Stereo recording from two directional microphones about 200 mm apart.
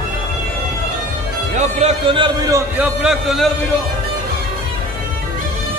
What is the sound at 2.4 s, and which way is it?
A man's voice, 10° right (ahead or behind).